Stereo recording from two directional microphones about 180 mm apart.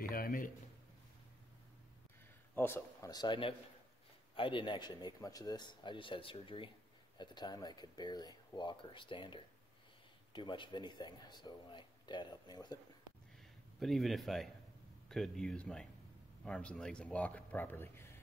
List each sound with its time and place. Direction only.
0.1 s a sound: 50° left (ahead or behind)
2.5 s speech: 15° left (ahead or behind)
13.7 s speech: centre (ahead or behind)